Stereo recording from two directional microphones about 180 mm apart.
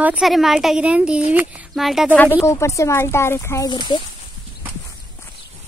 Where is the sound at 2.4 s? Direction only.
15° left (ahead or behind).